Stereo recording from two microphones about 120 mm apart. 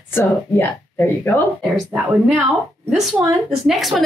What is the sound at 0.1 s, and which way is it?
A woman's voice, 20° left (ahead or behind).